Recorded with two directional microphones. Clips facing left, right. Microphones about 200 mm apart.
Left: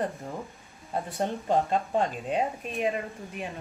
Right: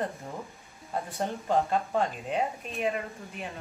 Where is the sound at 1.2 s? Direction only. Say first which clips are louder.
Left 1 dB; 15° left (ahead or behind).